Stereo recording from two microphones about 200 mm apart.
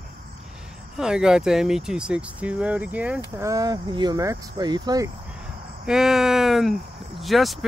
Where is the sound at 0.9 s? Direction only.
5° right (ahead or behind); by 5.1 s 20° right (ahead or behind).